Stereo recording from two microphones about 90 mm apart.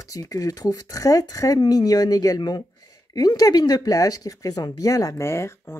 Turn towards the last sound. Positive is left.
turn(degrees=30)  # may be behind; listen again after turning